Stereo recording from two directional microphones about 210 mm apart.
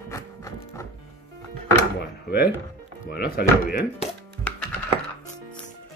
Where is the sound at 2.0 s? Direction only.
50° left (ahead or behind).